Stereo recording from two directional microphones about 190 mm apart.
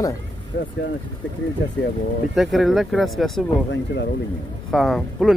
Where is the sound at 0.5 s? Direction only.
60° left (ahead or behind).